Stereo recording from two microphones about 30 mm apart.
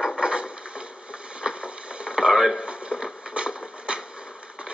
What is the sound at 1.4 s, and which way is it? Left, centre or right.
Radio, right.